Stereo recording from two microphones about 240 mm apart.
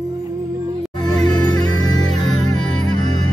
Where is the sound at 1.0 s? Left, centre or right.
Centre.